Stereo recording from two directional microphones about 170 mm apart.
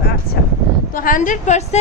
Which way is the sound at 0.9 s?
55° left (ahead or behind).